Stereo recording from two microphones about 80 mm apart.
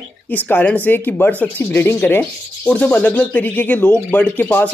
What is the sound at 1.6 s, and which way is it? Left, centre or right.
Rub, left.